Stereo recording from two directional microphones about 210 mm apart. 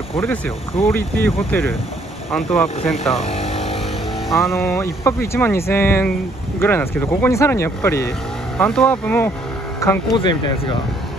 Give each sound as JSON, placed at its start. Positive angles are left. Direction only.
{"t": 0.2, "sound": "speech", "side_deg": 10}
{"t": 3.3, "sound": "a sound", "side_deg": 30}
{"t": 4.5, "sound": "speech", "side_deg": 10}